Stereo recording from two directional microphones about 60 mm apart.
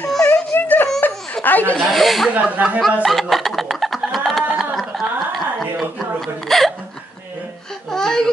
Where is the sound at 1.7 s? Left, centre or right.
Centre.